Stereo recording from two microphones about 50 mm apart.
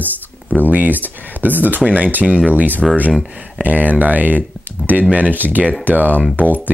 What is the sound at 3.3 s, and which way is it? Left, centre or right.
Speech, right.